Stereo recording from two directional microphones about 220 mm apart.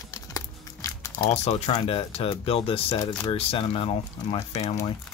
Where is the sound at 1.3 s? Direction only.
30° left (ahead or behind).